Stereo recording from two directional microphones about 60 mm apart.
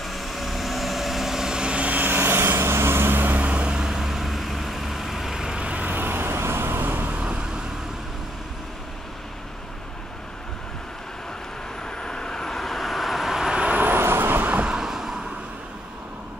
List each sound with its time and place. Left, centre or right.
0.0 s vehicle: centre; by 7.1 s right
7.1 s vehicle: right
11.8 s vehicle: centre
13.7 s vehicle: right
14.7 s a sound: centre